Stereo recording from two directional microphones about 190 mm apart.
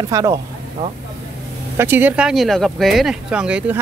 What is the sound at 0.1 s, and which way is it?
Speech, 15° right (ahead or behind).